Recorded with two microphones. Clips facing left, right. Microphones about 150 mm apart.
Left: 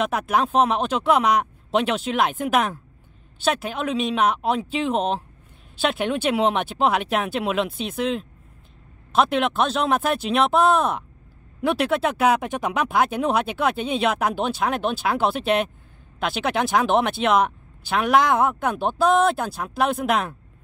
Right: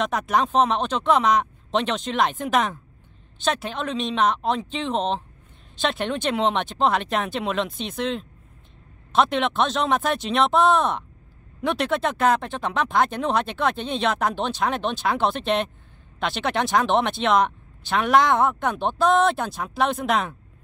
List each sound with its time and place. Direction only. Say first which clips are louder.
0.0 s speech: left 1 dB; 5° left (ahead or behind)